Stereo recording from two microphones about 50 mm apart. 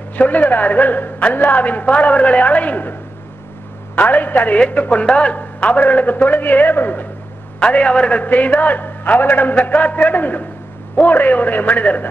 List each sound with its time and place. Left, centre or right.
0.1 s a woman's voice: left
7.6 s a woman's voice: left